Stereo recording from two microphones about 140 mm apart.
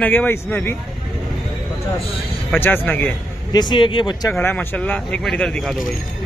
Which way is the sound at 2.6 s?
15° left (ahead or behind).